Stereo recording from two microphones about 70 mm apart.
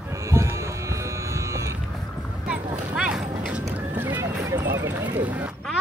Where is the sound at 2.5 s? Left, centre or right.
Centre.